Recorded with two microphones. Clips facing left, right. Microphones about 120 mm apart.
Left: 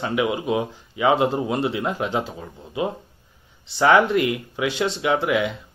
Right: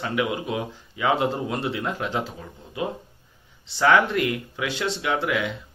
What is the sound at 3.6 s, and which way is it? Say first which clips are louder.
Speech: left 3 dB; 15° left (ahead or behind).